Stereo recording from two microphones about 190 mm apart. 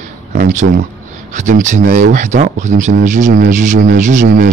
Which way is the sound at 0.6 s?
90° right.